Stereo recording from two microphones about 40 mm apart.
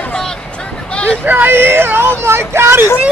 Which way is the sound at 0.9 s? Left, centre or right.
Left.